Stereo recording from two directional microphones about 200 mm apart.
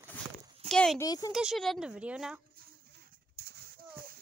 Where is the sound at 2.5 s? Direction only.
55° right (ahead or behind).